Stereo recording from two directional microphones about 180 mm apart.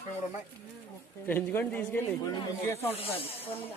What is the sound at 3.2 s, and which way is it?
Speech, 35° left (ahead or behind).